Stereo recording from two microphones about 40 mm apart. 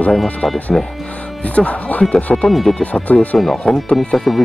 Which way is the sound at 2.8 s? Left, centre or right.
Left.